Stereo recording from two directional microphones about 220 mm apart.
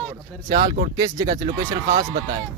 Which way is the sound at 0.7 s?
20° right (ahead or behind).